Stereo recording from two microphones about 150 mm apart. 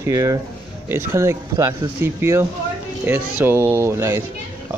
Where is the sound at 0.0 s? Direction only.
20° right (ahead or behind).